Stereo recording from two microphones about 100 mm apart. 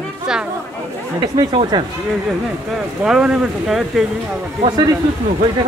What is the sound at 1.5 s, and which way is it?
Speech, 50° right (ahead or behind).